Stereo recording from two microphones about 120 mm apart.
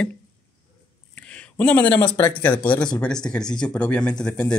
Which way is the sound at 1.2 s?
10° left (ahead or behind).